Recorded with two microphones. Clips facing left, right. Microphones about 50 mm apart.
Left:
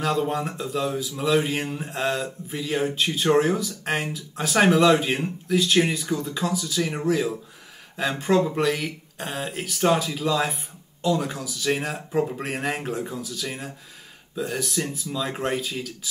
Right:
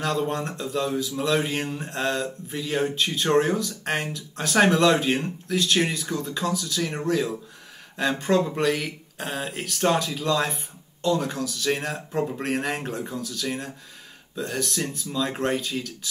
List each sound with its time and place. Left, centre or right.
0.0 s speech: centre